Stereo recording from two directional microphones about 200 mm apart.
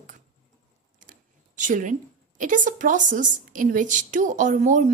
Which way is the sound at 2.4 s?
40° right (ahead or behind).